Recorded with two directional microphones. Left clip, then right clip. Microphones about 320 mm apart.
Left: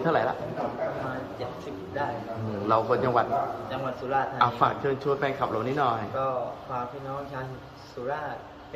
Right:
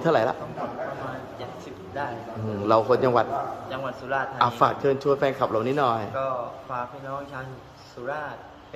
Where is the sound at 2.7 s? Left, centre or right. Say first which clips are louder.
Right 4 dB; right.